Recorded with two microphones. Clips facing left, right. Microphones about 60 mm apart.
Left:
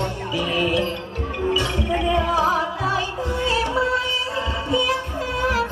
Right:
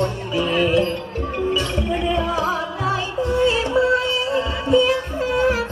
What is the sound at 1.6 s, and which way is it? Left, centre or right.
Music, left.